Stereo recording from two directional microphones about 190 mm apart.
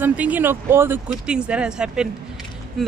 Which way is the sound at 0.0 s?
10° right (ahead or behind).